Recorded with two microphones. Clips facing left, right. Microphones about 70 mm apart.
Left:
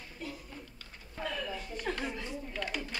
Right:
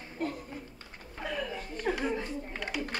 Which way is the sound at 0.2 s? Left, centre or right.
Right.